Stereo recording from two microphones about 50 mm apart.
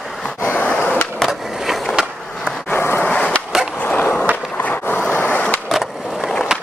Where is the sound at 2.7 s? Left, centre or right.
Left.